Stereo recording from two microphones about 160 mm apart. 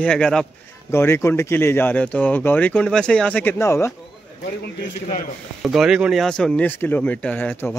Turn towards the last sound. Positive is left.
turn(degrees=10)  # may be behind; listen again after turning